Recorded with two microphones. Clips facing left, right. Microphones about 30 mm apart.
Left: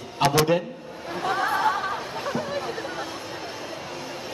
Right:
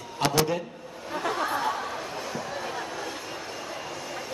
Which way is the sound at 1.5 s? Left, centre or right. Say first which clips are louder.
Left 5 dB; left.